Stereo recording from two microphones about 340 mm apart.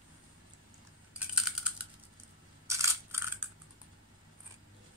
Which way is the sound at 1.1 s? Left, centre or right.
Centre.